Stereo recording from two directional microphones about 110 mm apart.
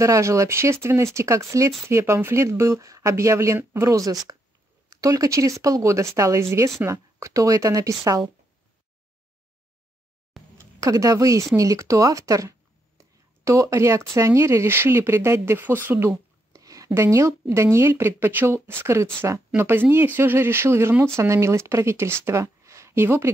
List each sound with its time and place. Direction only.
0.0 s speech: 30° right (ahead or behind)
10.6 s speech: 30° right (ahead or behind)